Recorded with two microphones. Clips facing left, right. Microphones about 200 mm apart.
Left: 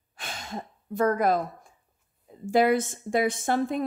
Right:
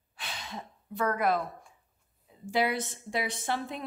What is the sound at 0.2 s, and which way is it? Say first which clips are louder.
Sigh: left 5 dB; 45° left (ahead or behind).